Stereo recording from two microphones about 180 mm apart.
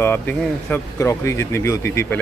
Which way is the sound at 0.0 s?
10° left (ahead or behind).